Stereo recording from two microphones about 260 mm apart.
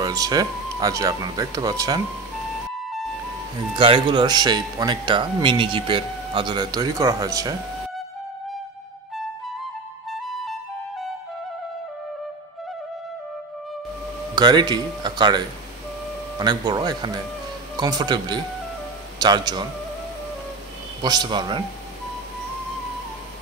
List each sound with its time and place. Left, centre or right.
0.0 s speech: centre
2.7 s music: centre
3.7 s speech: centre
10.1 s music: centre
14.3 s speech: centre
21.0 s speech: centre